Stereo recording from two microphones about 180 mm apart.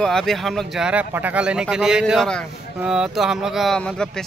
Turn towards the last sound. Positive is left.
turn(degrees=5)  # may be behind; listen again after turning